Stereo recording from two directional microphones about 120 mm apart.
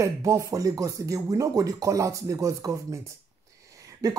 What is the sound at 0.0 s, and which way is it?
Speech, 25° right (ahead or behind).